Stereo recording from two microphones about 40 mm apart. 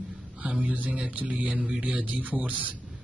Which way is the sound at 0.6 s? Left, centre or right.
Right.